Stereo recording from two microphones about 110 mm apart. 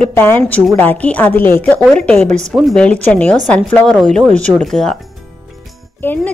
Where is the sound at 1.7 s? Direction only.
5° left (ahead or behind).